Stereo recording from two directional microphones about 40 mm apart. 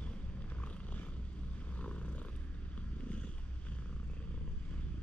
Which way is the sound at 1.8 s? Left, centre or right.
Left.